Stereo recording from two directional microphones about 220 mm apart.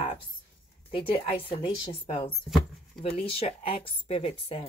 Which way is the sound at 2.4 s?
Centre (ahead or behind).